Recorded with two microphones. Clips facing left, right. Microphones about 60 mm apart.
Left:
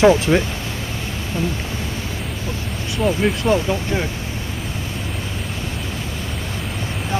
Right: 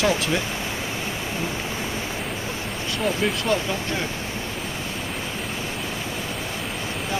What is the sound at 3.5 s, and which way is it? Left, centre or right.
Speech, centre.